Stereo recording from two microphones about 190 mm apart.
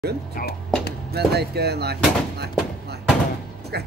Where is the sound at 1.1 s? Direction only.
60° right (ahead or behind).